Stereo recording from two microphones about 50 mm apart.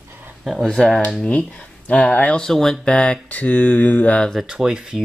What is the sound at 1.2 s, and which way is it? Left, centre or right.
Speech, left.